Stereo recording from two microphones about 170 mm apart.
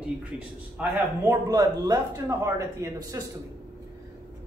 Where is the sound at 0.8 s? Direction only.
15° right (ahead or behind).